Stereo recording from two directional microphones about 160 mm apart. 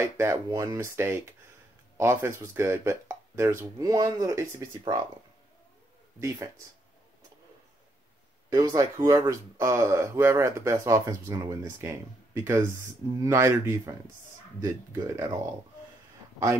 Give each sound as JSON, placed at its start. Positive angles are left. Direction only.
{"t": 0.0, "sound": "speech", "side_deg": -15}
{"t": 6.1, "sound": "speech", "side_deg": -20}
{"t": 8.5, "sound": "speech", "side_deg": -20}
{"t": 13.2, "sound": "speech", "side_deg": -15}